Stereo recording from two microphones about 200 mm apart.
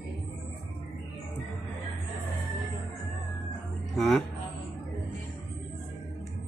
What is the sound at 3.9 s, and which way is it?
Music, centre (ahead or behind).